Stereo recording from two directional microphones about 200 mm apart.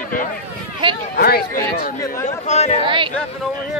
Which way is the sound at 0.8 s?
25° right (ahead or behind).